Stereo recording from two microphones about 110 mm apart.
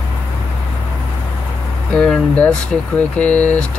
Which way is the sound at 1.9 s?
10° left (ahead or behind).